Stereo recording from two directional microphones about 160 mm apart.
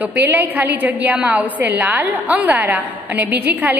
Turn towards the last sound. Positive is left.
turn(degrees=-10)  # may be behind; listen again after turning